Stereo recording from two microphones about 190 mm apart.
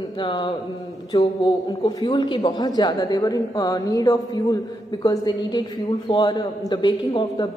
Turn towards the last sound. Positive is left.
turn(degrees=25)  # may be behind; listen again after turning